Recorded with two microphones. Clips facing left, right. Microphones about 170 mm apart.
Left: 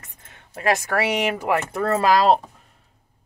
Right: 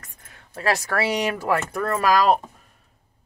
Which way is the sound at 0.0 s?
25° left (ahead or behind).